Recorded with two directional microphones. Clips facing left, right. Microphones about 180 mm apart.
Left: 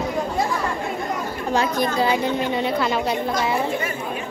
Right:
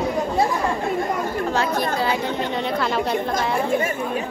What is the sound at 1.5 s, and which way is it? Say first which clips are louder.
A woman's voice: left 4 dB; 15° left (ahead or behind).